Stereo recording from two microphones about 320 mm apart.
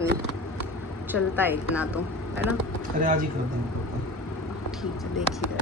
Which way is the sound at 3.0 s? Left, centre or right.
Right.